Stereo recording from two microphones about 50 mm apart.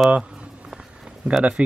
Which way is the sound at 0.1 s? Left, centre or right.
Centre.